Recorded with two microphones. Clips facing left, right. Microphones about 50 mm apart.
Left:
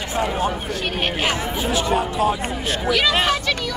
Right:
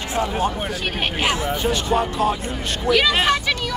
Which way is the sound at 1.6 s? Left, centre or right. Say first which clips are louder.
Left 1 dB; centre.